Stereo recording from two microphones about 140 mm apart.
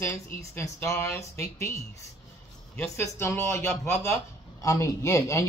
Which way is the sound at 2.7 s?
15° left (ahead or behind).